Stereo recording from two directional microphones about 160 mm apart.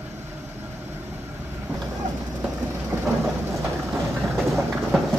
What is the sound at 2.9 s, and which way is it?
Thunder, 20° right (ahead or behind).